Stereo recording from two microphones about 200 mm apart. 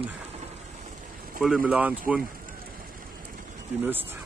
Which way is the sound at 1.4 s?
5° right (ahead or behind).